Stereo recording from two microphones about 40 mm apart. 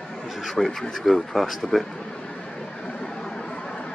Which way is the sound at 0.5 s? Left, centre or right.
Centre.